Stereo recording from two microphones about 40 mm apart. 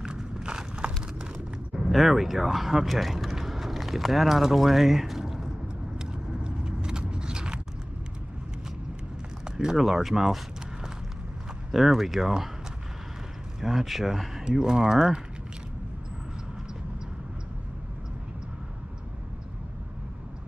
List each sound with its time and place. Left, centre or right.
0.0 s horse: centre
1.3 s speech: centre
5.9 s vehicle: right
9.4 s mechanisms: centre
9.8 s speech: centre
13.6 s speech: centre